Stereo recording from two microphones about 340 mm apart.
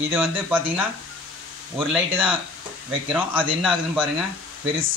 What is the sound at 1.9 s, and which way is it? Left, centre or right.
A man's voice, centre.